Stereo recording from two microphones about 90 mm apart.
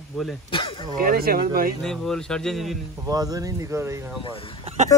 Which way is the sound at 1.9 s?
5° left (ahead or behind).